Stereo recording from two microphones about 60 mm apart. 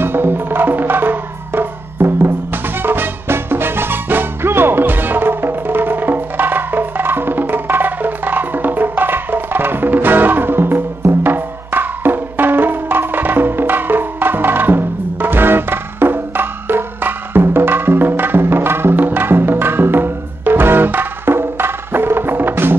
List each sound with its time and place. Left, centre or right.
0.0 s music: right